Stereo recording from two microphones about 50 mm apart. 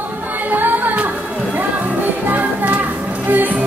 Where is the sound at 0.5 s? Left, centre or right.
Right.